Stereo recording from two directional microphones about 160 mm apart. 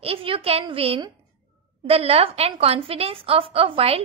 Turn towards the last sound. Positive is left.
turn(degrees=-35)  # may be behind; listen again after turning